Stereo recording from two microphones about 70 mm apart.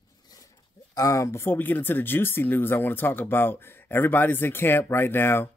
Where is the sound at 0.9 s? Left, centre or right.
Left.